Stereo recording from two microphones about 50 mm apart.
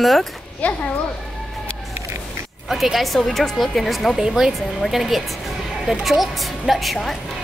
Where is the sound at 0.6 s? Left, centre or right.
Left.